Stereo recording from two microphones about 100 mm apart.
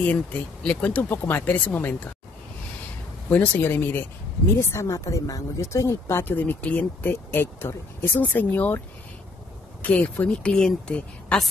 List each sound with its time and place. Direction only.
0.0 s speech: 15° left (ahead or behind)
3.3 s speech: 15° left (ahead or behind)